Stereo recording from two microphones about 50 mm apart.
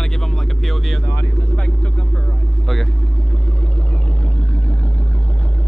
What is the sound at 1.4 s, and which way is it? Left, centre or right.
Vehicle, left.